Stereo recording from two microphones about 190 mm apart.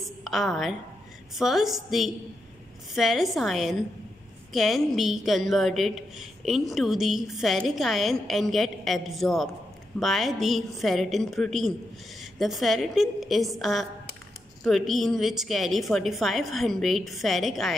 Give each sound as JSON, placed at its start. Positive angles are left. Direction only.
{"t": 0.2, "sound": "a woman's voice", "side_deg": 0}